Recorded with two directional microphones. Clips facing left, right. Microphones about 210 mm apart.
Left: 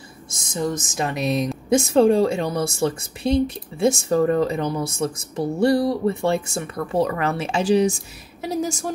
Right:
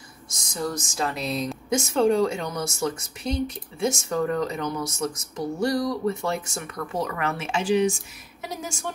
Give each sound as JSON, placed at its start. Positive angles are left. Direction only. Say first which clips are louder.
{"t": 0.3, "sound": "speech", "louder": "left 5 dB", "side_deg": 25}
{"t": 1.7, "sound": "a woman's voice", "louder": "left 5 dB", "side_deg": 30}